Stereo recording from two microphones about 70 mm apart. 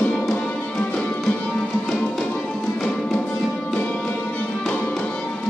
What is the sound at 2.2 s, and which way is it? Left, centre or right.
Music, centre.